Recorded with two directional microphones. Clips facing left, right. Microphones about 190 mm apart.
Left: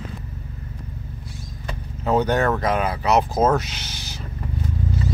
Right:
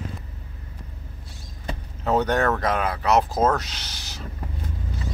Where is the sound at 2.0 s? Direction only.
Centre (ahead or behind).